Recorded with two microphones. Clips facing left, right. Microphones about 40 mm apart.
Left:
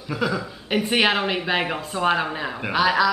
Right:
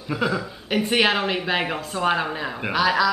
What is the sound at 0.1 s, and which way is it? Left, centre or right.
A woman's voice, centre.